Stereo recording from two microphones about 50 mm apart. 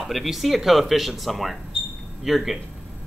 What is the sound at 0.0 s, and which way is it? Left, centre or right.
Speech, centre.